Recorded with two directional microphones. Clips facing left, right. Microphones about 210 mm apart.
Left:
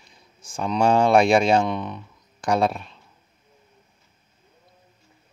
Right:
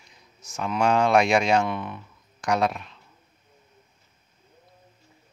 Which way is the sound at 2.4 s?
30° left (ahead or behind).